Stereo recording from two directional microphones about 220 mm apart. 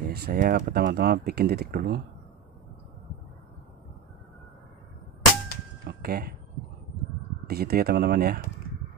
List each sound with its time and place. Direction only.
0.0 s speech: 45° right (ahead or behind)
5.9 s a sound: 45° right (ahead or behind)
7.4 s speech: 45° right (ahead or behind)